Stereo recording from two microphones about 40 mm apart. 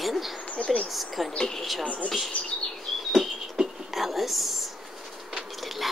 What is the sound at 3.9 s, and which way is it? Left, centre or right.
Whispering, centre.